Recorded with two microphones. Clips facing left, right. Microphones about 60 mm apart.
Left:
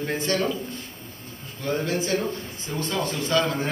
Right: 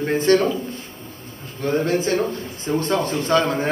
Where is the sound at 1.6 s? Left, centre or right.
Right.